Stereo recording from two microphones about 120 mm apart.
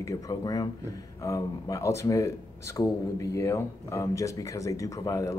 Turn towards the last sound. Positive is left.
turn(degrees=30)  # may be behind; listen again after turning